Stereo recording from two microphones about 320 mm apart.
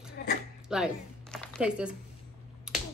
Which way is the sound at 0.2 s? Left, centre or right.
Left.